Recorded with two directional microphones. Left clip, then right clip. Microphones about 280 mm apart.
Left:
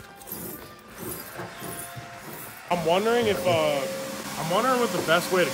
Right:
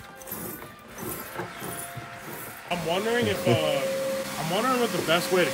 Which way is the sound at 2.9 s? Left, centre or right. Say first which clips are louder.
Left 3 dB; left.